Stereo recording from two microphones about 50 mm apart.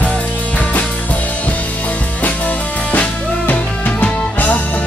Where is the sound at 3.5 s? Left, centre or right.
Left.